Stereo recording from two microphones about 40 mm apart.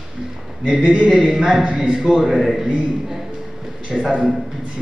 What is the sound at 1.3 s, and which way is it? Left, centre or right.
A man's voice, centre.